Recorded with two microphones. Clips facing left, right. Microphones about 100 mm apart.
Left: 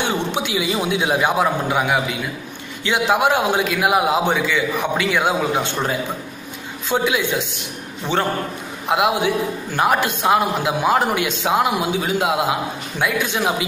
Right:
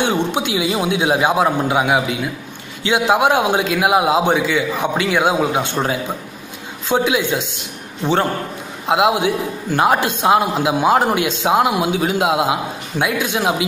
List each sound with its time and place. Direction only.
0.0 s a man's voice: 15° right (ahead or behind)
6.9 s a man's voice: 15° right (ahead or behind)